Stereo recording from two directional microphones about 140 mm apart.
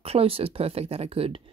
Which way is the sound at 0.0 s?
45° right (ahead or behind).